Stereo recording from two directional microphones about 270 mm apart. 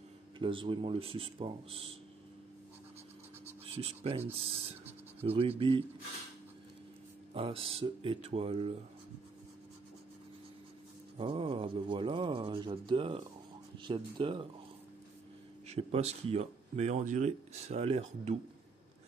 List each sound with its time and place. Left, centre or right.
0.4 s speech: centre
3.6 s speech: right
7.3 s speech: centre
11.1 s speech: centre
15.6 s speech: right